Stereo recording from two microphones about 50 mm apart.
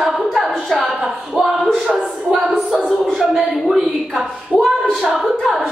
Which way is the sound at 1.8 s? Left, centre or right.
Centre.